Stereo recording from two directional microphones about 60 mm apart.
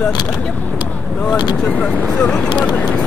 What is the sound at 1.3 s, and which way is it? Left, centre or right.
Speech, centre.